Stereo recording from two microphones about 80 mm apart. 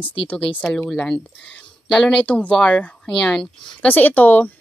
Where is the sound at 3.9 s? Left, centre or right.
Left.